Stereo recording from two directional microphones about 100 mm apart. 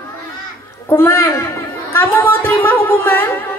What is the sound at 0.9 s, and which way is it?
Music, 25° left (ahead or behind).